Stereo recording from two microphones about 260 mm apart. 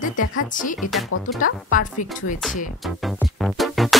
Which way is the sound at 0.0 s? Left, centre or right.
Left.